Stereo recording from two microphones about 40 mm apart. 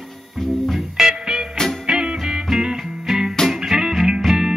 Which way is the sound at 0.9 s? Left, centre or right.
Centre.